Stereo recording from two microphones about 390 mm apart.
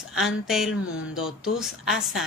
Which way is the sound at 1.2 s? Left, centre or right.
Centre.